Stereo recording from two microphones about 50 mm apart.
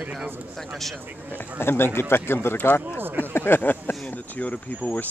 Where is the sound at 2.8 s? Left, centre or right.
Right.